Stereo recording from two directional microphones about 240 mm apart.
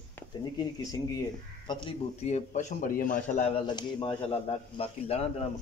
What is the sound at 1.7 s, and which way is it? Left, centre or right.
A man's voice, left.